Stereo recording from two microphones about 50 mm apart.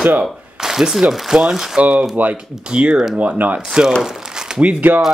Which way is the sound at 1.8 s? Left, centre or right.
Right.